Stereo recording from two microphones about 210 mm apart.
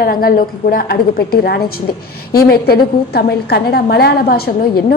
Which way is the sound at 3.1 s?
50° left (ahead or behind).